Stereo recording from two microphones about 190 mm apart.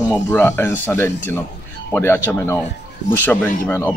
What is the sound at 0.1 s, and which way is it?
Speech, 10° left (ahead or behind).